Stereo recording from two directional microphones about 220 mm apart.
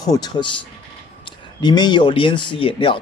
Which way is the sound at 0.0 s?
15° left (ahead or behind).